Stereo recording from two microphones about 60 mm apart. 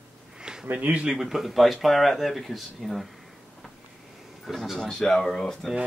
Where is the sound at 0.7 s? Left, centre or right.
Right.